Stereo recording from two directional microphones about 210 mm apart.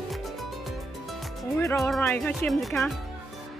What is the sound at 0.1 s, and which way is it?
Music, centre (ahead or behind).